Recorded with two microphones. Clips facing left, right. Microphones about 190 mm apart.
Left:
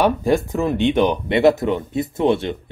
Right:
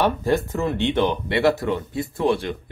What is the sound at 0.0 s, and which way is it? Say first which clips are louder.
Speech: left 3 dB; 15° left (ahead or behind).